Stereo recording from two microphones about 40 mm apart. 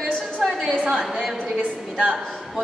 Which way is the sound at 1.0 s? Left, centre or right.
Centre.